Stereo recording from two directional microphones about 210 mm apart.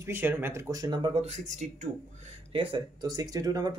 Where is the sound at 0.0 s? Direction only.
10° right (ahead or behind).